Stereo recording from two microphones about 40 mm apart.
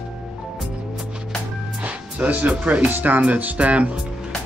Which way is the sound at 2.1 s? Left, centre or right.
Right.